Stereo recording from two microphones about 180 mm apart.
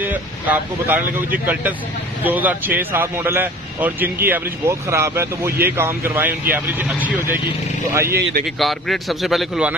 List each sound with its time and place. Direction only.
0.0 s speech: 10° right (ahead or behind)
2.2 s speech: 10° right (ahead or behind)
8.5 s a man's voice: centre (ahead or behind)